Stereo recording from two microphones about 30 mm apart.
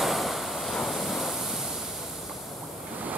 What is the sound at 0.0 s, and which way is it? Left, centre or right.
Waves, centre.